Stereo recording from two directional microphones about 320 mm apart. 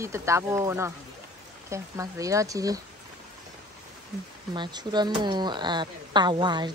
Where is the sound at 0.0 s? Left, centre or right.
Centre.